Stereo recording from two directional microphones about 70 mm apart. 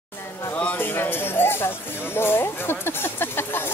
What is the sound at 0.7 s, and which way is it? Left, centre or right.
Speech, left.